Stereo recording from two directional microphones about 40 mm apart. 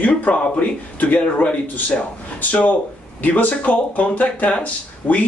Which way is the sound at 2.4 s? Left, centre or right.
Left.